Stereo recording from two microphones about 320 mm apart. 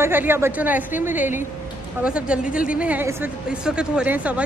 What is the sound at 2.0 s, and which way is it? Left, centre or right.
A woman's voice, centre.